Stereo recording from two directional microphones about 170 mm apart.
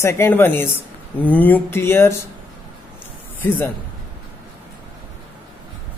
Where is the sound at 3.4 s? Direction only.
10° left (ahead or behind).